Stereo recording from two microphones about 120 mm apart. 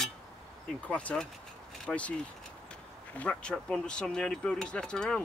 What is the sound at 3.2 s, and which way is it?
Speech, 10° left (ahead or behind).